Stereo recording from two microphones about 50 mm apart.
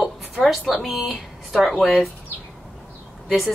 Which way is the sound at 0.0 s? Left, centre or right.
Centre.